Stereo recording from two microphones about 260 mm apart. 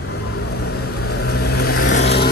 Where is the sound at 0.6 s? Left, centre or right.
Left.